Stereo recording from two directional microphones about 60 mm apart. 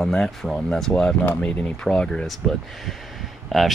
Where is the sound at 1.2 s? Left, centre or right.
Left.